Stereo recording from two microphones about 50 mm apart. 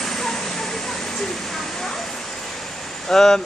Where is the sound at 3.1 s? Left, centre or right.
Centre.